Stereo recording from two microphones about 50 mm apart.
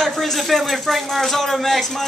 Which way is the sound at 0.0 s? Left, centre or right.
Centre.